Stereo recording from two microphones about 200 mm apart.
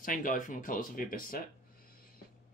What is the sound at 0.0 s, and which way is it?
Speech, 40° left (ahead or behind).